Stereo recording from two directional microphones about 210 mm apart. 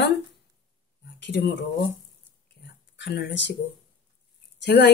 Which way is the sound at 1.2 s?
55° left (ahead or behind).